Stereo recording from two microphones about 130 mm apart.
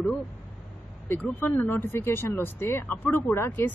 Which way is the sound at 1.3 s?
15° left (ahead or behind).